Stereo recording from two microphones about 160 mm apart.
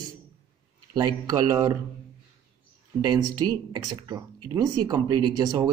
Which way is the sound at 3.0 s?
25° right (ahead or behind).